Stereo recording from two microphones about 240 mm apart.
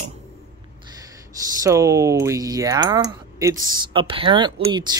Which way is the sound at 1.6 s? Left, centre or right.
Centre.